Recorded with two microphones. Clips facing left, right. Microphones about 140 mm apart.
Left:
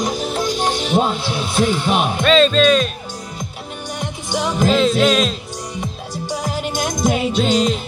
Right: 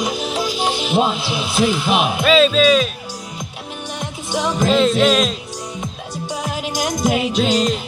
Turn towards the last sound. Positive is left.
turn(degrees=0)  # may be behind; listen again after turning